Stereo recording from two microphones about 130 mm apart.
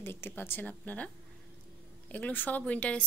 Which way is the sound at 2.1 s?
10° left (ahead or behind).